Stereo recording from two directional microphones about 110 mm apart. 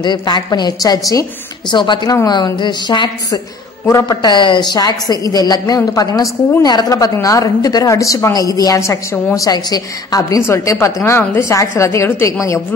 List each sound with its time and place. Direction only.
0.0 s a man's voice: 40° left (ahead or behind)
1.7 s a man's voice: 45° left (ahead or behind)
3.8 s a man's voice: 35° left (ahead or behind)